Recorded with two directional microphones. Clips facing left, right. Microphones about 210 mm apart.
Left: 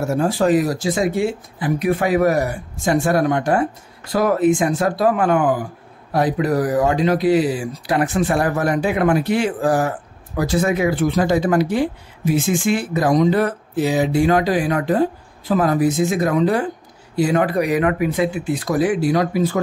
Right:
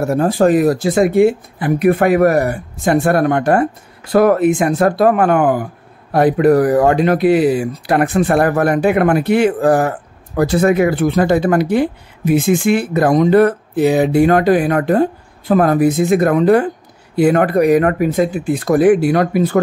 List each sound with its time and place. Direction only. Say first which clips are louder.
0.0 s speech: right 5 dB; 55° right (ahead or behind)